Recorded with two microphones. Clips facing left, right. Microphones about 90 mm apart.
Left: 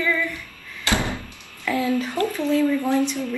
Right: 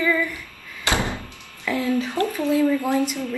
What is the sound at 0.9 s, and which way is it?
Door, 20° right (ahead or behind).